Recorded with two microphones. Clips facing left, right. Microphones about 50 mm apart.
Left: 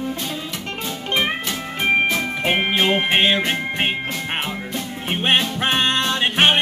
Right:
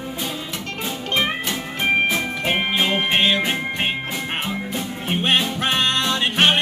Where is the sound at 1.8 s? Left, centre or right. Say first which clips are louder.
Left 1 dB; centre.